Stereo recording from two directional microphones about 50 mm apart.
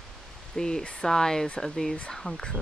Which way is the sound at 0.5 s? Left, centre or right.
Centre.